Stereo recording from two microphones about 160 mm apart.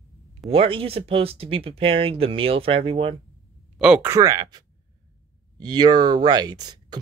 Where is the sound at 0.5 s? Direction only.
35° right (ahead or behind).